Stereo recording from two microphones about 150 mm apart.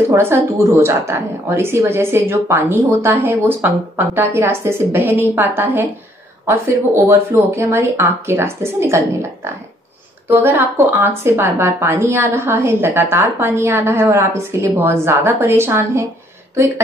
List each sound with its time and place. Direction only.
0.1 s a woman's voice: 15° right (ahead or behind)